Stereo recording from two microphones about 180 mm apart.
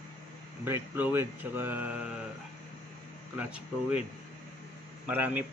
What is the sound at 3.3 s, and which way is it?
Speech, 10° right (ahead or behind).